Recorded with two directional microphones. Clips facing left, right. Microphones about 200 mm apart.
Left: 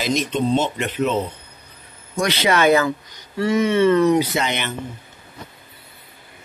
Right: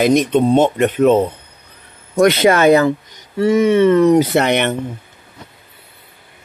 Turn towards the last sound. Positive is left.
turn(degrees=-65)  # may be behind; listen again after turning